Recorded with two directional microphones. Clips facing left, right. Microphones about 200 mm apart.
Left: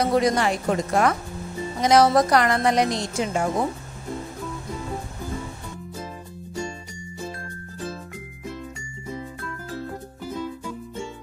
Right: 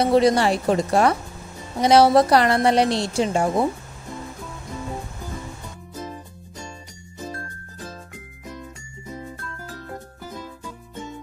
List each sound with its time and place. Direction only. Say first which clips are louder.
0.0 s a woman's voice: right 4 dB; 30° right (ahead or behind)